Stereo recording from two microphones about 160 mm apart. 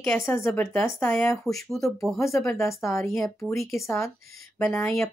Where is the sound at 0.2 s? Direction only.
15° left (ahead or behind).